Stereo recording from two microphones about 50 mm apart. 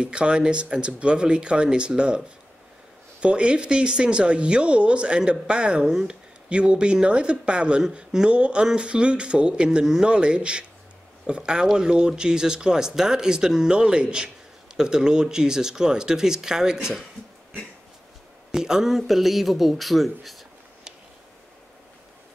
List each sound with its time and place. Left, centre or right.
0.0 s a woman's voice: centre
18.5 s speech: centre